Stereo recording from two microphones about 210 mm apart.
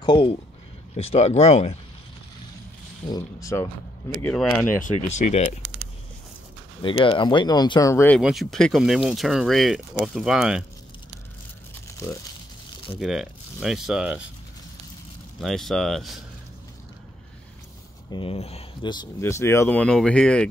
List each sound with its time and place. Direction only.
0.0 s speech: 25° left (ahead or behind)
3.1 s speech: 15° left (ahead or behind)
4.3 s speech: 5° left (ahead or behind)
6.8 s speech: 20° left (ahead or behind)
8.2 s speech: centre (ahead or behind)
13.0 s speech: centre (ahead or behind)
15.4 s speech: centre (ahead or behind)
18.1 s speech: 25° left (ahead or behind); by 20.4 s 5° left (ahead or behind)